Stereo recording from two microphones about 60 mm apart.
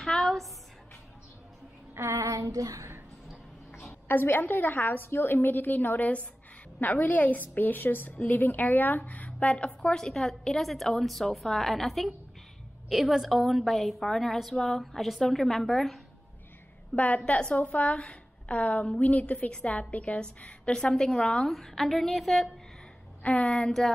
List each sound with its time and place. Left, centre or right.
0.0 s a sound: centre
2.0 s female singing: right
3.8 s a woman's voice: left; by 16.0 s centre
16.9 s a woman's voice: left; by 22.5 s centre
23.2 s a woman's voice: left